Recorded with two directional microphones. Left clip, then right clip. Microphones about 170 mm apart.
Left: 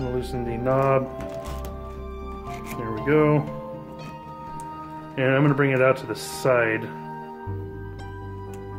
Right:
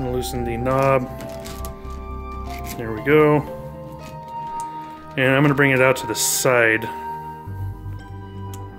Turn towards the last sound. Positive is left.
turn(degrees=-50)  # may be behind; listen again after turning